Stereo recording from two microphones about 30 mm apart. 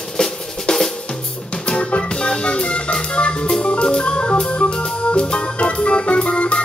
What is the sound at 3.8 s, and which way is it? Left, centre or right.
Organ, left.